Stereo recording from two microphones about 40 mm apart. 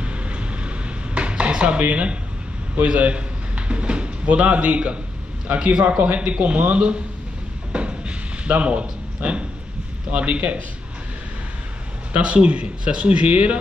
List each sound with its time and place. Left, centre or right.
0.0 s a sound: right
2.7 s speech: right
5.6 s speech: right
5.9 s speech: right
7.7 s a sound: right
10.1 s speech: right
12.1 s speech: right